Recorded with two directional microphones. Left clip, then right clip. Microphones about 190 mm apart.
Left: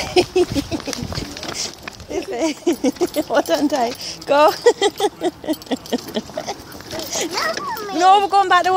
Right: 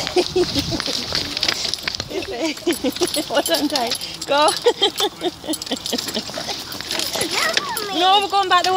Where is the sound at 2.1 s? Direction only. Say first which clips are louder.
Left 7 dB; 40° left (ahead or behind).